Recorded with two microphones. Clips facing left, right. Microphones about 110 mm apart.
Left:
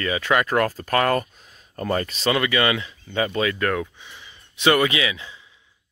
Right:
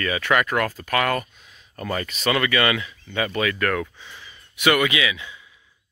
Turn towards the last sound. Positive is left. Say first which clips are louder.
# even
turn(degrees=30)  # may be behind; listen again after turning